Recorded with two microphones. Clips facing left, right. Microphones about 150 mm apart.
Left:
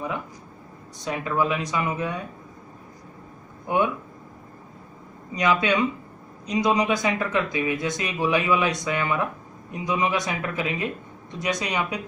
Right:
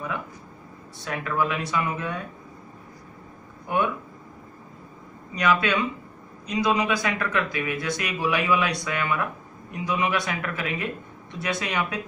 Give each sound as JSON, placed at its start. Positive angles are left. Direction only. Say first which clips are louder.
{"t": 1.0, "sound": "speech", "louder": "left 2 dB", "side_deg": 20}
{"t": 3.6, "sound": "speech", "louder": "left 2 dB", "side_deg": 20}
{"t": 5.3, "sound": "speech", "louder": "left 1 dB", "side_deg": 20}